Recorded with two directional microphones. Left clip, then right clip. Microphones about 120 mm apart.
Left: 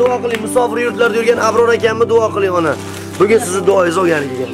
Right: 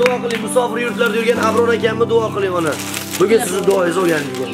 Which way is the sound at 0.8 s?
40° left (ahead or behind).